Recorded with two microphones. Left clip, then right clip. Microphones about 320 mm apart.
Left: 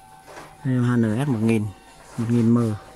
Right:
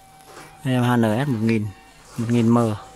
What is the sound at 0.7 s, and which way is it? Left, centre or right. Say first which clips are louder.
Speech: right 4 dB; centre.